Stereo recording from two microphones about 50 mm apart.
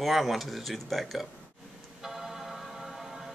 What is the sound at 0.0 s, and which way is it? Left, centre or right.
Speech, centre.